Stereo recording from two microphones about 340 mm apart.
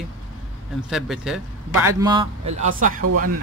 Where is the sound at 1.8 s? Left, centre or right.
Centre.